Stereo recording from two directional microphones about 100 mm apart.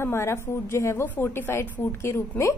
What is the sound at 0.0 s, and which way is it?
A woman's voice, 25° left (ahead or behind).